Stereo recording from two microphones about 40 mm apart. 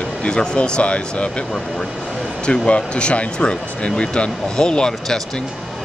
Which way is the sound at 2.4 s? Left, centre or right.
Left.